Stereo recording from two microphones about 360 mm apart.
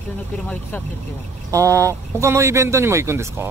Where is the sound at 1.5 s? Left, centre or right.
Centre.